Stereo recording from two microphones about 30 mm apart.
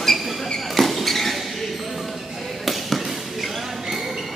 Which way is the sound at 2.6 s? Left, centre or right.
Centre.